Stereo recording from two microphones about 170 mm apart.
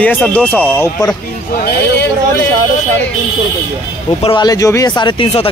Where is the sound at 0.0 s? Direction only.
10° left (ahead or behind).